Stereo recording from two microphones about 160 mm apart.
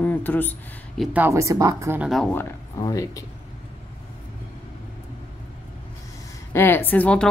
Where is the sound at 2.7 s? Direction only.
20° left (ahead or behind).